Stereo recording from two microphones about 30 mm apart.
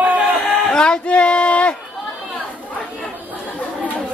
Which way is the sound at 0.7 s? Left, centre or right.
Left.